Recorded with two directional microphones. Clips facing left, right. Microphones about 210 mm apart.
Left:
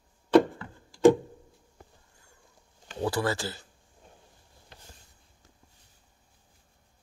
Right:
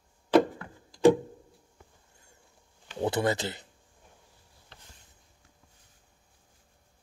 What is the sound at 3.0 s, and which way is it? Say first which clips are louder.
Speech: right 1 dB; 20° right (ahead or behind).